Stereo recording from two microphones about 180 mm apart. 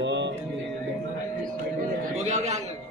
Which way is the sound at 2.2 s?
40° right (ahead or behind).